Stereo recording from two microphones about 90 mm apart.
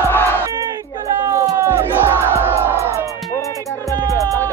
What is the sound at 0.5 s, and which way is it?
Music, 35° right (ahead or behind).